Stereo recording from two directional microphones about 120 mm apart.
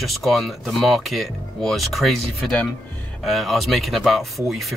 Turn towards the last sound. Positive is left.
turn(degrees=0)  # may be behind; listen again after turning